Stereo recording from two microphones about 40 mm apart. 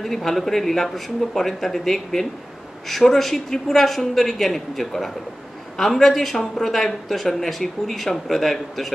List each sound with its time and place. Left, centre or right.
0.0 s speech: centre